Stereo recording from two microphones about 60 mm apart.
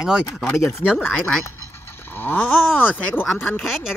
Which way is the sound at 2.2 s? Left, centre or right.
Left.